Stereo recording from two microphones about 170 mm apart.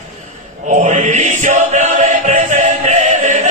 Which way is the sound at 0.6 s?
45° right (ahead or behind).